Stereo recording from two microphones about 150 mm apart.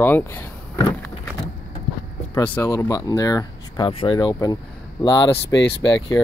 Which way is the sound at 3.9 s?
35° left (ahead or behind).